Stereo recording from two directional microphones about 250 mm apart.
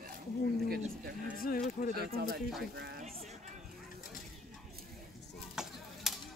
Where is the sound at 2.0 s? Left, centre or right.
Right.